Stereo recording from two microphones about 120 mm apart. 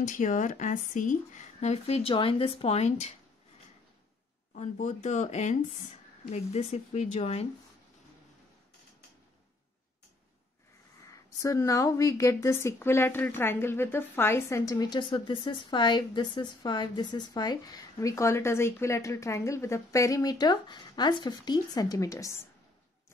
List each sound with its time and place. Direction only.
0.0 s speech: 90° left; by 3.1 s 65° left (ahead or behind)
4.6 s speech: 90° left
6.3 s speech: 65° left (ahead or behind)
11.1 s a woman's voice: 25° left (ahead or behind)